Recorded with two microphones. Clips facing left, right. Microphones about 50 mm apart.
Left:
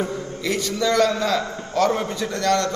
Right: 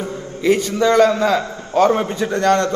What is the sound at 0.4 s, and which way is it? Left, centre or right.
A man's voice, right.